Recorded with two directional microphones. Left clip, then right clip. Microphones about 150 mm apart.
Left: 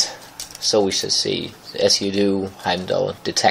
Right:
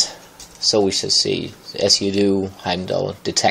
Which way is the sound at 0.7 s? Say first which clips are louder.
Right 1 dB; 20° right (ahead or behind).